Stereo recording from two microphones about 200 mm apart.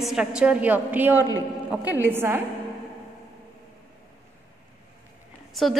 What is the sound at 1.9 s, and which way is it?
Speech, 10° right (ahead or behind).